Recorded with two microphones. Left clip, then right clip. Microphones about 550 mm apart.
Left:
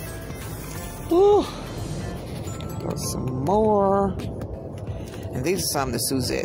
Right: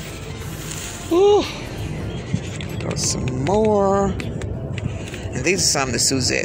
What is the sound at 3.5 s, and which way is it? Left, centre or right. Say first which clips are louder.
Speech: right 2 dB; left.